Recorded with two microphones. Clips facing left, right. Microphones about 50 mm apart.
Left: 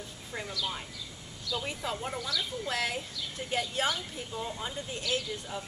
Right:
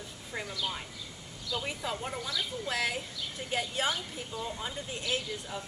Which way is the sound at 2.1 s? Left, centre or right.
Right.